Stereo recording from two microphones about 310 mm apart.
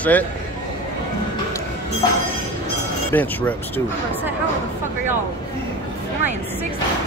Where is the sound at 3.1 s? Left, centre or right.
Centre.